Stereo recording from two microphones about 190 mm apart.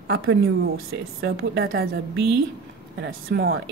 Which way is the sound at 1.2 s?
55° right (ahead or behind).